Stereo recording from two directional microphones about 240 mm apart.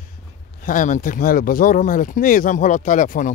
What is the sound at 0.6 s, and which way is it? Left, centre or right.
Speech, left.